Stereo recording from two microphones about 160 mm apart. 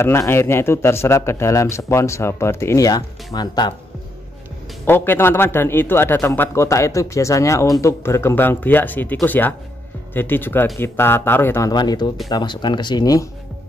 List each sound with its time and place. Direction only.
0.3 s speech: 15° left (ahead or behind)
4.8 s speech: 15° left (ahead or behind)
11.7 s speech: 25° left (ahead or behind)